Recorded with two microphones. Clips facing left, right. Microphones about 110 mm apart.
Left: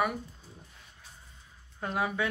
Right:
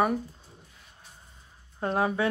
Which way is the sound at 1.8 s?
35° right (ahead or behind).